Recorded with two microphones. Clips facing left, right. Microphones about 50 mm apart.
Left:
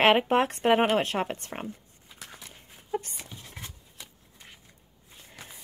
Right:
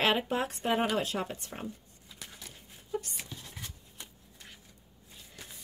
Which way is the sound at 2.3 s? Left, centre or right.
Left.